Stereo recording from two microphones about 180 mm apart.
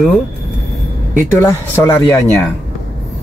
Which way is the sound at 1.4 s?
15° left (ahead or behind).